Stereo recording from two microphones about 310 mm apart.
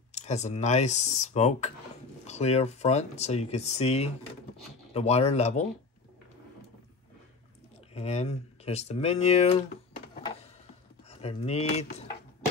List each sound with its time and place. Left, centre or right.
0.1 s speech: left
7.9 s speech: left
11.1 s speech: centre